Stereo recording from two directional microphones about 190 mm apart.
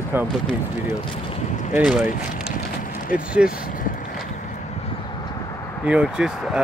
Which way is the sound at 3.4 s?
5° right (ahead or behind).